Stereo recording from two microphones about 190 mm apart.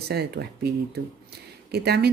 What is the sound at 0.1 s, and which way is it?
Speech, 55° right (ahead or behind).